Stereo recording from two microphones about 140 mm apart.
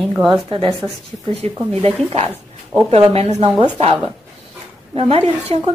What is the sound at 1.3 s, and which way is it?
A woman's voice, 45° right (ahead or behind).